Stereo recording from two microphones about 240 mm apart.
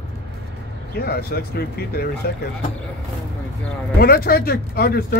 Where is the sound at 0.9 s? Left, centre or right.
Left.